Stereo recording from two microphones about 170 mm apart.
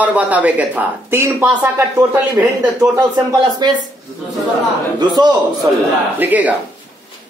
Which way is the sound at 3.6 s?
25° right (ahead or behind).